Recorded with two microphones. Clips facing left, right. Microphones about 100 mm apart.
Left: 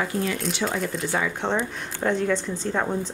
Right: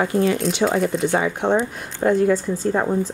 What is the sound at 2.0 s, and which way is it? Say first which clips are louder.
A woman's voice: right 6 dB; 10° right (ahead or behind).